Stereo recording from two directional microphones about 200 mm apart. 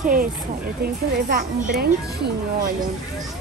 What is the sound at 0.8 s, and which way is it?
Speech, 45° right (ahead or behind).